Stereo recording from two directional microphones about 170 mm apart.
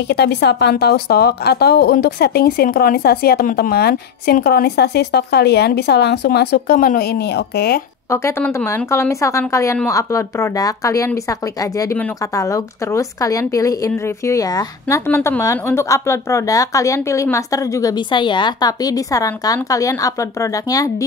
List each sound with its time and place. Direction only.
0.1 s a woman's voice: 85° left
8.1 s a woman's voice: 15° left (ahead or behind)